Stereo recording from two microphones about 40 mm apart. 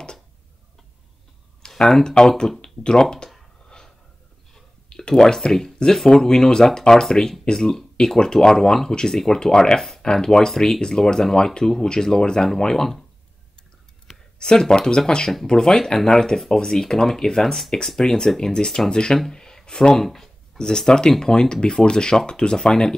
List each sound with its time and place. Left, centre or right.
1.9 s speech: centre
3.6 s a sound: centre
4.8 s speech: centre
10.5 s speech: centre
14.0 s speech: centre
19.3 s a sound: centre
19.9 s speech: centre